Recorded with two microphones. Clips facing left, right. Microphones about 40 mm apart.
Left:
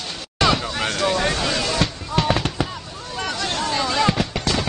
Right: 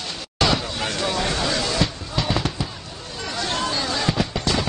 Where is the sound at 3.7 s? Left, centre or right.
Left.